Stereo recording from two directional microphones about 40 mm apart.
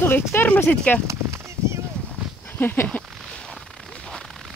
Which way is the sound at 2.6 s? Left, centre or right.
Left.